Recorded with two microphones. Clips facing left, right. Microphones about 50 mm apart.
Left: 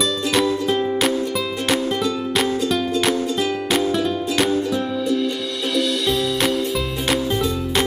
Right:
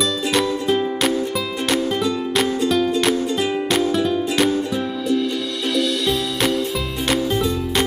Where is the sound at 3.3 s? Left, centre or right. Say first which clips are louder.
Right 1 dB; centre.